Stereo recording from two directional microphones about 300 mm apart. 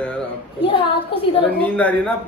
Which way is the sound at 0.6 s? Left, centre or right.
Centre.